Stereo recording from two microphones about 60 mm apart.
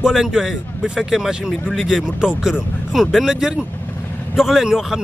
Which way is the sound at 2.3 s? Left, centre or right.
Centre.